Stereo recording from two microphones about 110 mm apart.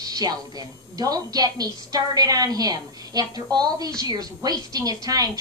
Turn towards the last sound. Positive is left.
turn(degrees=-35)  # may be behind; listen again after turning